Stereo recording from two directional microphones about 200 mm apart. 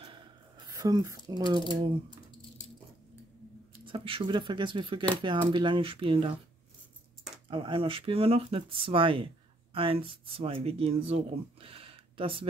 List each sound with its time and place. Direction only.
0.0 s a sound: 25° right (ahead or behind)
3.8 s speech: 25° right (ahead or behind)
7.4 s speech: 25° right (ahead or behind)